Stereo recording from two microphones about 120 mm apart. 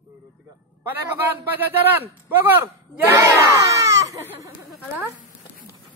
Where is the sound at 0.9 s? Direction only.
15° right (ahead or behind).